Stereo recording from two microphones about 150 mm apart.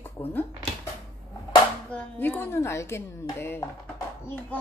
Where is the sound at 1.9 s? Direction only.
15° left (ahead or behind).